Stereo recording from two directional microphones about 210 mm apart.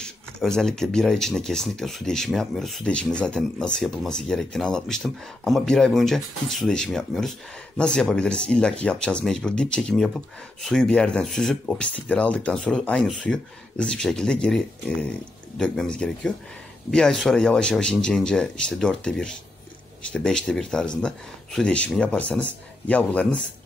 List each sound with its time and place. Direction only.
0.0 s speech: 5° left (ahead or behind)